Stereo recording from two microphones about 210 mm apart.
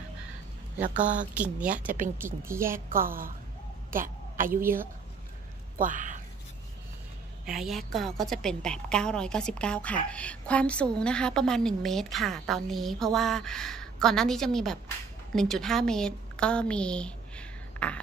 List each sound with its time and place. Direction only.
0.8 s a woman's voice: 40° right (ahead or behind)
1.3 s a woman's voice: 5° right (ahead or behind)
2.9 s a woman's voice: 40° right (ahead or behind)
3.9 s a sound: 40° right (ahead or behind)
4.5 s a woman's voice: 10° right (ahead or behind)
5.8 s speech: 35° right (ahead or behind)
7.4 s a woman's voice: centre (ahead or behind)